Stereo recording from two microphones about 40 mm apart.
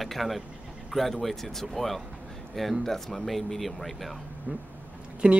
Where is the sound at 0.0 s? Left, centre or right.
Centre.